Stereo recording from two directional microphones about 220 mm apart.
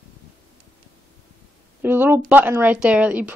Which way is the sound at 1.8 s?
10° right (ahead or behind).